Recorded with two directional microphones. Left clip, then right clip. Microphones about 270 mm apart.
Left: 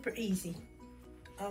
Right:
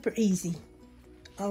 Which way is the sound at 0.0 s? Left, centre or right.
Right.